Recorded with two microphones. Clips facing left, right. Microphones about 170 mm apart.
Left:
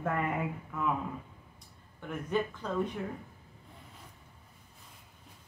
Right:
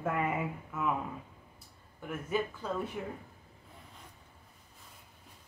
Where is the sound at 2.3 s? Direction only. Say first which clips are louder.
Left 1 dB; 5° right (ahead or behind).